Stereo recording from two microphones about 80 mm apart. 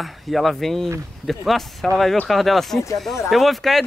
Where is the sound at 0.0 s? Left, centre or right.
Centre.